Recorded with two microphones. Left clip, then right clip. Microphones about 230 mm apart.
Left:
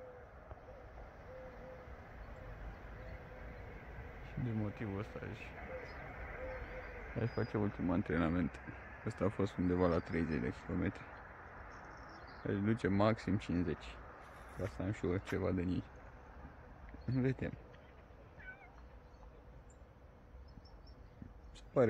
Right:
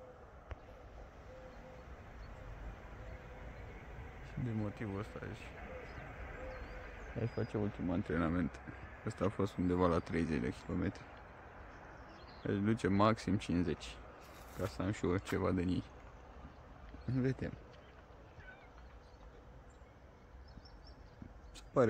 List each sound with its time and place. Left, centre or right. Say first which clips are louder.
4.6 s speech: even; centre
5.6 s a sound: left 4 dB; centre
7.2 s speech: left 1 dB; centre
12.4 s speech: right 1 dB; centre
17.1 s speech: even; centre